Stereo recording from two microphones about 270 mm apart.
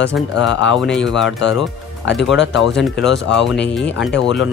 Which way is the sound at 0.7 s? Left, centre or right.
Centre.